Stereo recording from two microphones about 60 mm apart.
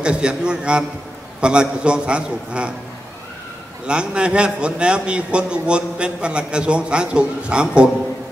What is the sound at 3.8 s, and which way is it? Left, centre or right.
A man's voice, centre.